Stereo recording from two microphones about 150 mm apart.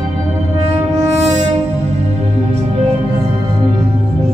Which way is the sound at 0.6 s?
50° right (ahead or behind).